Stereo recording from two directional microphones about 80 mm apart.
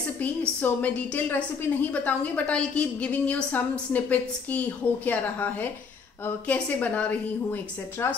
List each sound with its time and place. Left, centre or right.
0.6 s a woman's voice: centre
8.0 s a woman's voice: left